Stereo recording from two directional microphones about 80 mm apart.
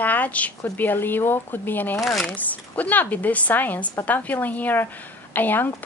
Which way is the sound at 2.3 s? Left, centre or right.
Centre.